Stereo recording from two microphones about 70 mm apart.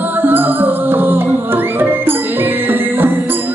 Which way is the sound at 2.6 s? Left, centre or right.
Right.